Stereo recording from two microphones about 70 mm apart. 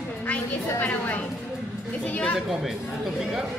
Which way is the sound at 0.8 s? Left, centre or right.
Left.